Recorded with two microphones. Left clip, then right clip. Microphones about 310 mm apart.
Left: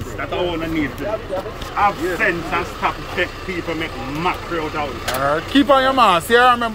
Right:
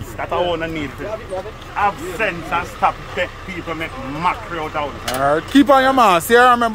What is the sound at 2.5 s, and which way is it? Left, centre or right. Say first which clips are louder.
Speech: right 3 dB; centre.